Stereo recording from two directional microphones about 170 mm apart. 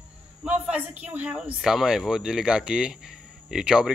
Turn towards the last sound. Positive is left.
turn(degrees=-5)  # may be behind; listen again after turning